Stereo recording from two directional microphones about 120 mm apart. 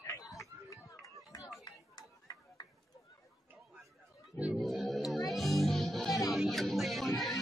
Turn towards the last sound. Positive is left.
turn(degrees=0)  # may be behind; listen again after turning